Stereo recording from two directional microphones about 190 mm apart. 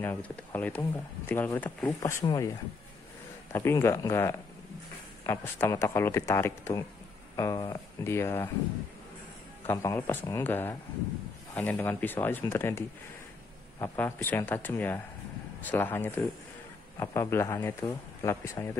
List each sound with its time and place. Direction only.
0.0 s speech: 10° left (ahead or behind)
3.5 s speech: 15° left (ahead or behind)
9.7 s speech: 15° left (ahead or behind)